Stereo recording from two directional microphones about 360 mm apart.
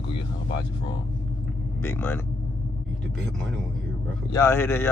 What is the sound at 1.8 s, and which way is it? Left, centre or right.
Speech, centre.